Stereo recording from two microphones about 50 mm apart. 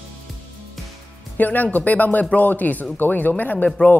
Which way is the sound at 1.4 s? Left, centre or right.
Left.